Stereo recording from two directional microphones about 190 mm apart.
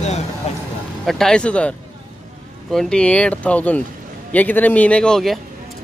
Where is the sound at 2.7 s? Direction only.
5° left (ahead or behind).